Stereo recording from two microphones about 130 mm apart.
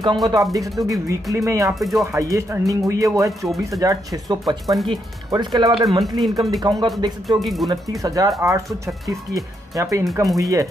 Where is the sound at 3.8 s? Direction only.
25° right (ahead or behind).